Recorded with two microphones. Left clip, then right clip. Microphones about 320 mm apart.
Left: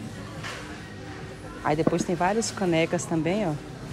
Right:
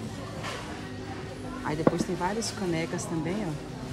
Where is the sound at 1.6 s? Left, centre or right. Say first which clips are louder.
Left 3 dB; centre.